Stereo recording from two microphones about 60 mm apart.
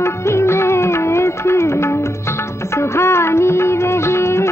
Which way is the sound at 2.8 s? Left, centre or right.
Left.